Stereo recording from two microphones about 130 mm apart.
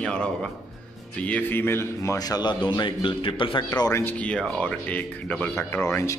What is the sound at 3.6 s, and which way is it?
Speech, 25° left (ahead or behind).